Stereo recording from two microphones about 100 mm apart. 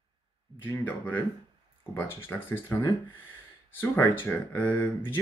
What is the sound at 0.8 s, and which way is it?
Speech, 20° left (ahead or behind).